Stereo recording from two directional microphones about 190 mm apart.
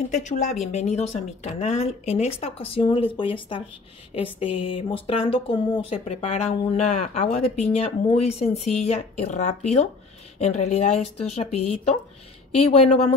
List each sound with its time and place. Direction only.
0.1 s speech: 40° left (ahead or behind)